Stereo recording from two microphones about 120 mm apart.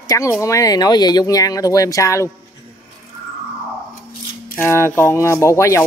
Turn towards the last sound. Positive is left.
turn(degrees=25)  # may be behind; listen again after turning